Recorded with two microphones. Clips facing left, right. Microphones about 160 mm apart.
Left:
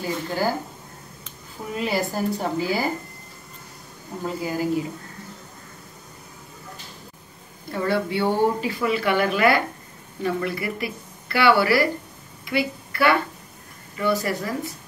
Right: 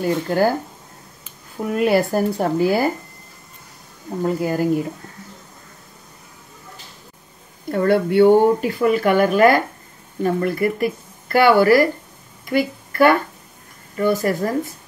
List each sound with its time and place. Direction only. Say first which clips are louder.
0.0 s speech: right 7 dB; 55° right (ahead or behind)
1.7 s speech: right 8 dB; 55° right (ahead or behind)
4.4 s speech: right 2 dB; 55° right (ahead or behind)
7.7 s speech: right 8 dB; 55° right (ahead or behind)
12.4 s a sound: right 5 dB; 45° right (ahead or behind)
13.9 s speech: right 5 dB; 45° right (ahead or behind)